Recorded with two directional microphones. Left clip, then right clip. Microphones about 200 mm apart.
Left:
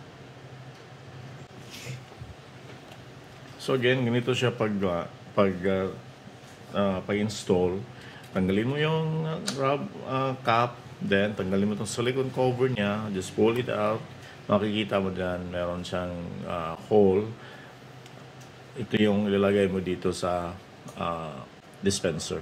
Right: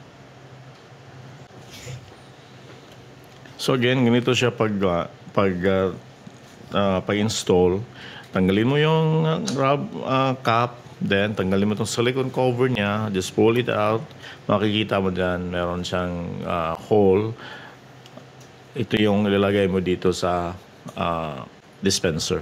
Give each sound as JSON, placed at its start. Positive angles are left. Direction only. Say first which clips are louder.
{"t": 3.5, "sound": "speech", "louder": "right 4 dB", "side_deg": -55}
{"t": 18.9, "sound": "speech", "louder": "right 5 dB", "side_deg": -45}